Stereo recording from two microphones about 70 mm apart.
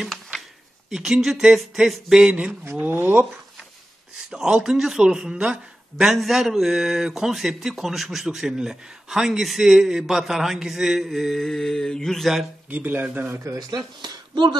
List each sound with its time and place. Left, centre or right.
0.0 s a sound: centre
0.8 s speech: centre
2.8 s speech: right
4.3 s speech: centre
12.6 s speech: right
13.7 s speech: right